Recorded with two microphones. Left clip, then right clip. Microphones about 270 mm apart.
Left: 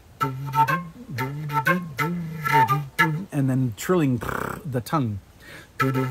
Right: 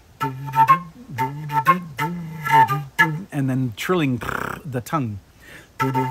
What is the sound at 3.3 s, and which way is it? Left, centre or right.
Speech, centre.